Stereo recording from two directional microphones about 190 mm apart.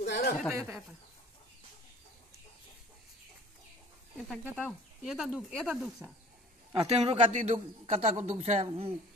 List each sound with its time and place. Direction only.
0.0 s a sound: 60° left (ahead or behind)
0.5 s speech: 15° right (ahead or behind)
4.6 s speech: centre (ahead or behind)
6.7 s speech: 30° right (ahead or behind)